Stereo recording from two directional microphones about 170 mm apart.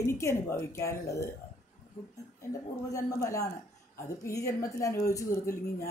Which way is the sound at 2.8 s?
15° left (ahead or behind).